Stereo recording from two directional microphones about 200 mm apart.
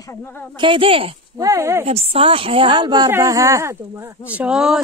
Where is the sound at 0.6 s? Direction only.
25° right (ahead or behind).